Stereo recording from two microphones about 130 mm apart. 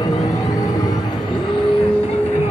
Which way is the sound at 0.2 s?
25° left (ahead or behind).